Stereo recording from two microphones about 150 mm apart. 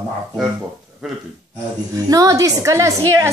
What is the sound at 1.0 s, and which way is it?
Speech, centre (ahead or behind).